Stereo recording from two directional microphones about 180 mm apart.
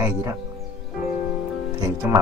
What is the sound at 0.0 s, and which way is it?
Speech, 15° right (ahead or behind).